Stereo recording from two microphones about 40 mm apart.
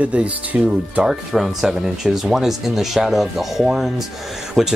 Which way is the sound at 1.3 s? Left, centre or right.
Centre.